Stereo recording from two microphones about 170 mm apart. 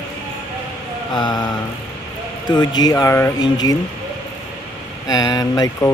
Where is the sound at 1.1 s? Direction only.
25° left (ahead or behind).